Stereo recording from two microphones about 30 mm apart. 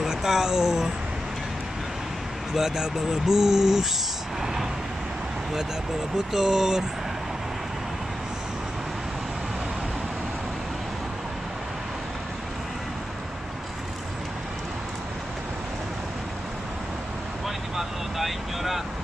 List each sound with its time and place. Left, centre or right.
0.0 s a sound: centre
2.5 s speech: centre
6.1 s speech: centre
17.7 s vehicle: centre